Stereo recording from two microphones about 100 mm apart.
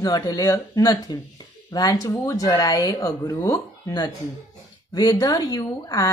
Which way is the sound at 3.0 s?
30° left (ahead or behind).